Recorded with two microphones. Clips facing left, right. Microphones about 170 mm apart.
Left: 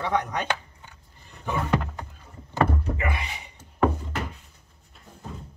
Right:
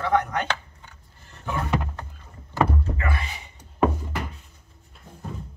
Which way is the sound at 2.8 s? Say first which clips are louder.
Even; 20° left (ahead or behind).